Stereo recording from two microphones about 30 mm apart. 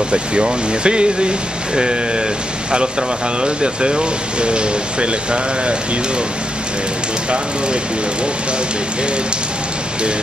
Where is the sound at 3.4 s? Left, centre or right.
Right.